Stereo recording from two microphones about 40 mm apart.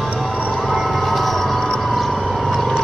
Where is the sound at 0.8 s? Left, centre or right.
Centre.